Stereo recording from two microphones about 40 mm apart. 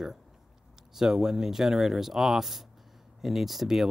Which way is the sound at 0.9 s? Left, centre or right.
Centre.